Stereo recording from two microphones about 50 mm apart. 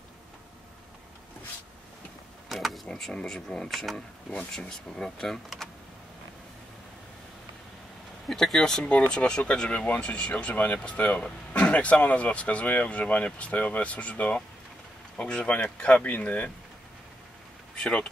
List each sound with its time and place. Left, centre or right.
2.5 s a sound: centre
2.9 s speech: centre
3.7 s speech: centre
4.3 s speech: left
4.6 s speech: centre
8.3 s speech: centre; by 16.4 s left
17.7 s speech: centre